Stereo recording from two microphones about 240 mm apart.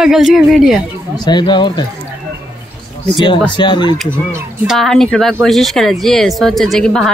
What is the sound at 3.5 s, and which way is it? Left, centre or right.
Speech, centre.